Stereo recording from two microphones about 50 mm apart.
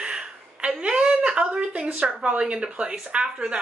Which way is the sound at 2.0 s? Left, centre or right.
Right.